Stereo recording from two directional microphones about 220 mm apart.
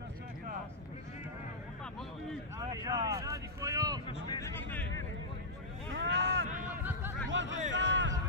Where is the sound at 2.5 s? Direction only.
15° right (ahead or behind).